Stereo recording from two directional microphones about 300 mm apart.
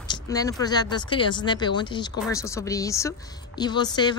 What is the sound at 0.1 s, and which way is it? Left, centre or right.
A woman's voice, centre.